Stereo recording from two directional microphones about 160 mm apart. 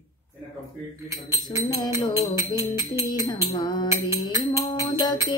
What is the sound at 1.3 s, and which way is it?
Music, 20° right (ahead or behind).